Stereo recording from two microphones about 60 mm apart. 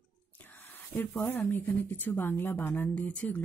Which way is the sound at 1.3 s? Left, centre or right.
Left.